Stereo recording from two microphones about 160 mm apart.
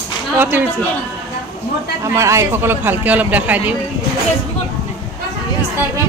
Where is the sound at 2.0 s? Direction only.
20° right (ahead or behind).